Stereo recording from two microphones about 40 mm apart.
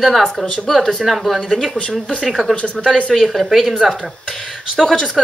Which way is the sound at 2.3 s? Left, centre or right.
Centre.